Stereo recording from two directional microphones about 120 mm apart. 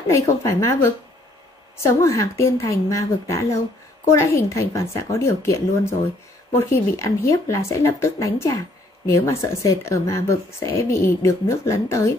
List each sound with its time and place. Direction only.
0.1 s speech: 25° left (ahead or behind)